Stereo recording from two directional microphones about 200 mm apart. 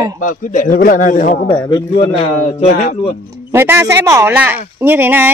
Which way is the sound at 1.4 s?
20° left (ahead or behind).